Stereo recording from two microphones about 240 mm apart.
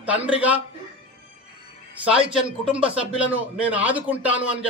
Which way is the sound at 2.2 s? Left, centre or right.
Right.